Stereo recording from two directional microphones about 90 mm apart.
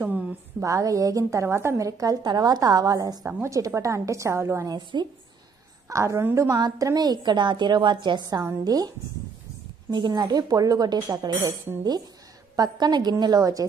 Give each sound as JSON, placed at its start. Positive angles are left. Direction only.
{"t": 0.6, "sound": "a woman's voice", "side_deg": -35}
{"t": 4.6, "sound": "a woman's voice", "side_deg": -55}
{"t": 5.9, "sound": "a woman's voice", "side_deg": -35}
{"t": 6.6, "sound": "a woman's voice", "side_deg": -45}
{"t": 12.5, "sound": "a woman's voice", "side_deg": -50}